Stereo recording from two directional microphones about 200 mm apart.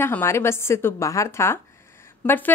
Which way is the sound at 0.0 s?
10° left (ahead or behind).